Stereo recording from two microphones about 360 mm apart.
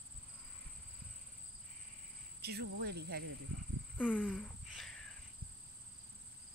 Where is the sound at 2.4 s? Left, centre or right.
Right.